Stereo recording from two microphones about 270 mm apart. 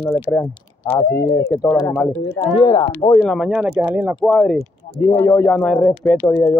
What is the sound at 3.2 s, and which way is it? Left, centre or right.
Speech, centre.